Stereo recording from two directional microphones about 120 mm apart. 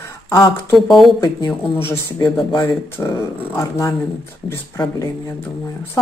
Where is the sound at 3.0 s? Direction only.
20° left (ahead or behind).